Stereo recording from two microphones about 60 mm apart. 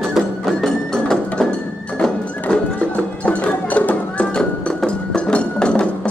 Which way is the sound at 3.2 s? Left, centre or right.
Left.